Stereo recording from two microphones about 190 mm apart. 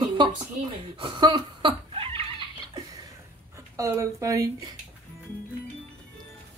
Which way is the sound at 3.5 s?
15° right (ahead or behind).